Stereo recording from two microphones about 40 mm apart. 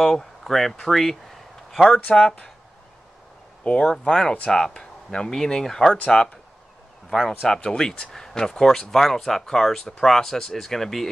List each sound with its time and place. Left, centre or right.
0.0 s speech: centre
2.0 s speech: left
4.0 s speech: centre